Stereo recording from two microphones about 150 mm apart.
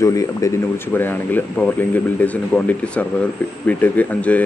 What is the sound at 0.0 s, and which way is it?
Speech, 20° left (ahead or behind).